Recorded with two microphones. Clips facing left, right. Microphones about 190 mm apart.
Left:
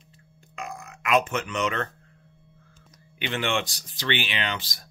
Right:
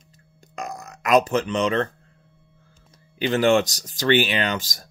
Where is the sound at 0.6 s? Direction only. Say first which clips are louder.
Right 4 dB; 40° right (ahead or behind).